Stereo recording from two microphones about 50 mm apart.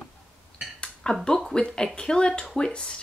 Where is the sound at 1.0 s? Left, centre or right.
Centre.